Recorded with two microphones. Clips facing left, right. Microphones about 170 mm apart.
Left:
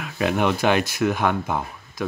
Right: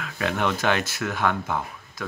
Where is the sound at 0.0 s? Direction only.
15° left (ahead or behind).